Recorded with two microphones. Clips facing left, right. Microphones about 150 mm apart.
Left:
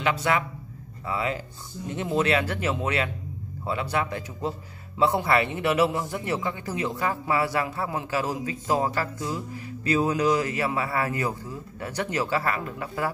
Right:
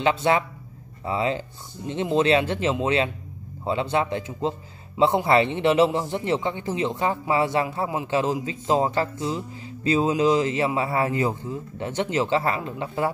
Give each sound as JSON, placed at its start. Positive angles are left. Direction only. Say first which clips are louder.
{"t": 0.0, "sound": "speech", "louder": "right 4 dB", "side_deg": -25}